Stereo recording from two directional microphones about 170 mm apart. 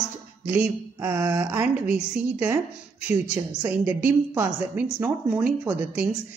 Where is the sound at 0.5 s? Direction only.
10° right (ahead or behind).